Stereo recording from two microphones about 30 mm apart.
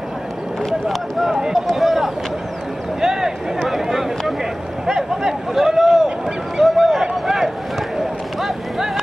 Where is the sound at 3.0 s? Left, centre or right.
Centre.